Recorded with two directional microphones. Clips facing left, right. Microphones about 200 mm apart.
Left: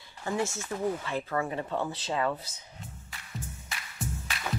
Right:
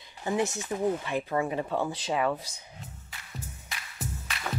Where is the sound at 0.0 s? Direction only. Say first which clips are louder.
Right 3 dB; 20° right (ahead or behind).